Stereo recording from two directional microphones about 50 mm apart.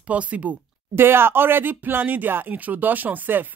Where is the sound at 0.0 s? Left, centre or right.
Right.